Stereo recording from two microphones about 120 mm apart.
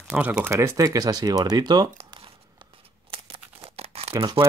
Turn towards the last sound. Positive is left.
turn(degrees=-50)  # may be behind; listen again after turning